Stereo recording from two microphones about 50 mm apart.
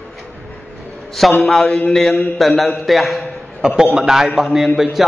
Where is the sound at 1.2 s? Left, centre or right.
Centre.